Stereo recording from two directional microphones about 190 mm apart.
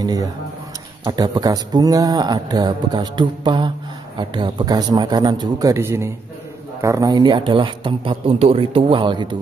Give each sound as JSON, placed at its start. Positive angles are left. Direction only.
{"t": 0.0, "sound": "a man's voice", "side_deg": -20}